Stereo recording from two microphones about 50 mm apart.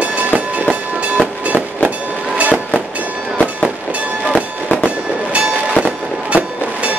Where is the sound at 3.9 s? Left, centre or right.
Right.